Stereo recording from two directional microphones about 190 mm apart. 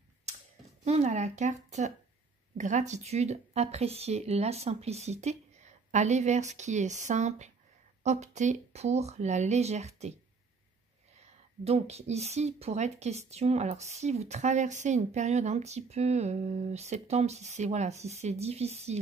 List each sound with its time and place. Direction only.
0.8 s speech: 35° right (ahead or behind)
11.1 s speech: 35° right (ahead or behind)